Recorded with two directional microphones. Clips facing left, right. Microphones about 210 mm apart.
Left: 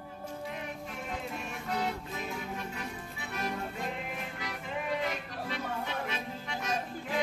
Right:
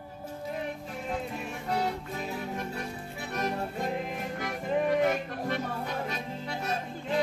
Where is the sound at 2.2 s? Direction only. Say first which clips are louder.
Right 4 dB; 40° right (ahead or behind).